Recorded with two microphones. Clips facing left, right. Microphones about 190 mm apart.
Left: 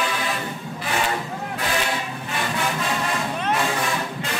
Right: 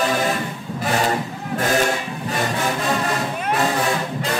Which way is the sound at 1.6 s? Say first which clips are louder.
Right 7 dB; 45° right (ahead or behind).